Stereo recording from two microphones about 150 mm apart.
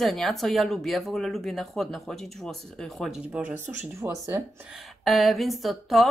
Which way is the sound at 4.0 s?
20° right (ahead or behind).